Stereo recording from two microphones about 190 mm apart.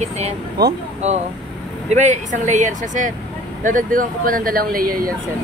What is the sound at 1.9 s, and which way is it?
Speech, 40° right (ahead or behind).